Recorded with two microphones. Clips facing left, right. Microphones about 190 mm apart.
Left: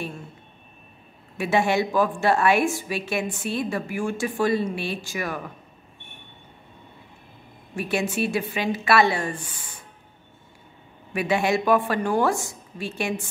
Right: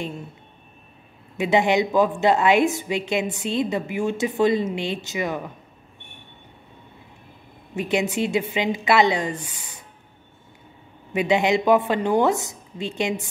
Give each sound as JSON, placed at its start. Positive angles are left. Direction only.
{"t": 1.4, "sound": "a woman's voice", "side_deg": -20}
{"t": 7.7, "sound": "a woman's voice", "side_deg": -20}
{"t": 11.1, "sound": "a woman's voice", "side_deg": -20}